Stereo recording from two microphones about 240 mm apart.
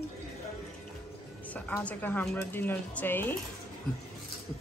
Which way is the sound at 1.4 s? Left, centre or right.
Centre.